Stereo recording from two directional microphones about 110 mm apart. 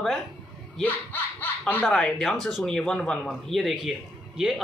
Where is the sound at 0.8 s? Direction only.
20° left (ahead or behind).